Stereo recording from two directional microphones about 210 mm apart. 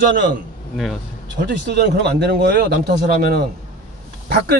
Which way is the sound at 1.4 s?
55° right (ahead or behind).